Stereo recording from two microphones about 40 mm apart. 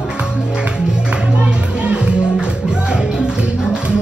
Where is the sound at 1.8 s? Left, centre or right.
Right.